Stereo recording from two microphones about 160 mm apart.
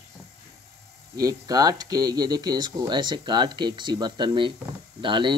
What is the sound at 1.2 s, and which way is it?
Speech, 25° right (ahead or behind).